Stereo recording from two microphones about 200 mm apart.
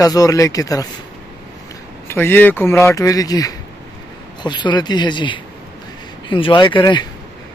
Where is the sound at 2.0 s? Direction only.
10° left (ahead or behind).